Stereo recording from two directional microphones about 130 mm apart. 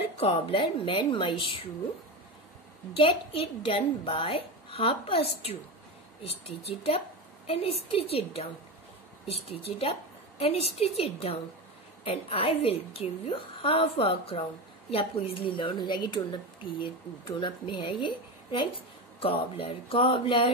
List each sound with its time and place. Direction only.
0.0 s a woman's voice: 50° left (ahead or behind)
3.0 s a woman's voice: 45° left (ahead or behind)